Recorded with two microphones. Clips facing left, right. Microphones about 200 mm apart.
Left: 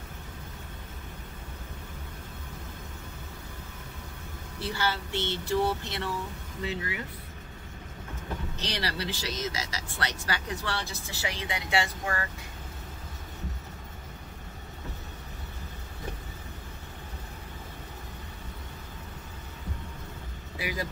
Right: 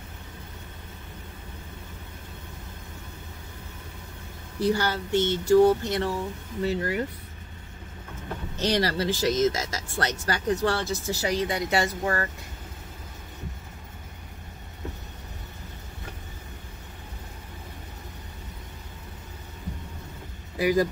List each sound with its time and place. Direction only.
4.6 s speech: 45° right (ahead or behind)
8.5 s speech: 45° right (ahead or behind)
20.5 s speech: 45° right (ahead or behind)